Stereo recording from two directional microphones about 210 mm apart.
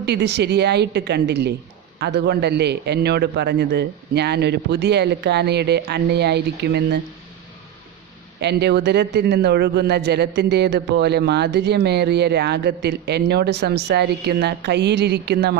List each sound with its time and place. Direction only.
0.0 s a man's voice: 55° right (ahead or behind)
8.4 s a man's voice: 55° right (ahead or behind)